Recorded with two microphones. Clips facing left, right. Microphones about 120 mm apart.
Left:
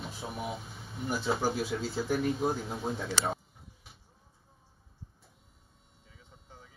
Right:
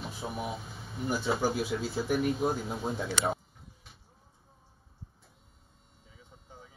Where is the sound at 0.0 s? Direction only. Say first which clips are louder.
Right 2 dB; centre (ahead or behind).